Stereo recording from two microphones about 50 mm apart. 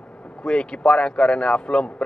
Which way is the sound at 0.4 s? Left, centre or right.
Centre.